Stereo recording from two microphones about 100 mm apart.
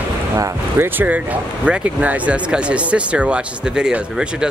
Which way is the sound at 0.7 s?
20° right (ahead or behind).